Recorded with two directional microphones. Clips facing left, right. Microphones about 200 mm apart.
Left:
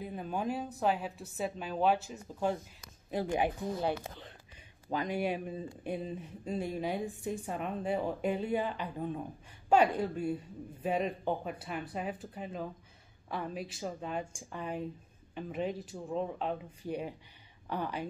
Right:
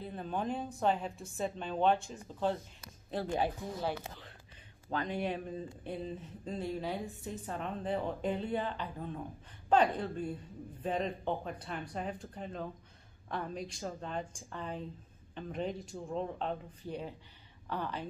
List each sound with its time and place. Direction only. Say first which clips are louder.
0.0 s a woman's voice: left 1 dB; 10° left (ahead or behind)